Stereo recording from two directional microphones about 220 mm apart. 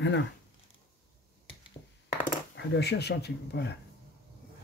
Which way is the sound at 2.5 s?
50° left (ahead or behind).